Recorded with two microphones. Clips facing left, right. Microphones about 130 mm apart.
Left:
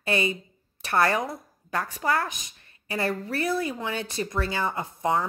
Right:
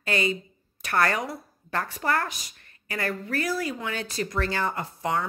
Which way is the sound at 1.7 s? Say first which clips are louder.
Even; 10° left (ahead or behind).